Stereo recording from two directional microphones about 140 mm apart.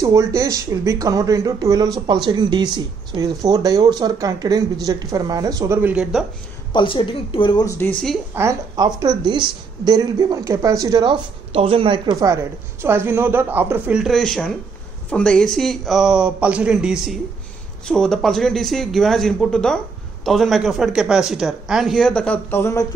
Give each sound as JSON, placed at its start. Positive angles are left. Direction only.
{"t": 0.0, "sound": "speech", "side_deg": -25}
{"t": 6.7, "sound": "speech", "side_deg": 35}
{"t": 7.6, "sound": "speech", "side_deg": 20}
{"t": 7.9, "sound": "speech", "side_deg": 0}
{"t": 8.4, "sound": "speech", "side_deg": -25}
{"t": 11.5, "sound": "speech", "side_deg": -40}
{"t": 12.1, "sound": "speech", "side_deg": -25}
{"t": 14.0, "sound": "speech", "side_deg": 0}